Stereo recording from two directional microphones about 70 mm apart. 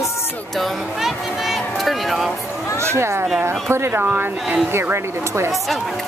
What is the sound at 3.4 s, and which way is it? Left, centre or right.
Speech, right.